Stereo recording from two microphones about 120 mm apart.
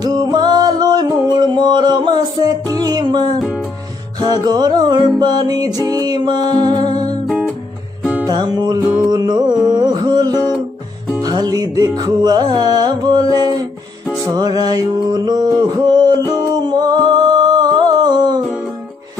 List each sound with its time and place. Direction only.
0.0 s music: 35° right (ahead or behind)
3.3 s music: 5° right (ahead or behind)
4.2 s music: 35° right (ahead or behind)
7.2 s music: 5° right (ahead or behind)
8.3 s music: 35° right (ahead or behind)